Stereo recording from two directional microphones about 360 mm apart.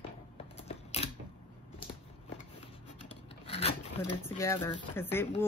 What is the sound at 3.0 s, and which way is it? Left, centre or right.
Speech, centre.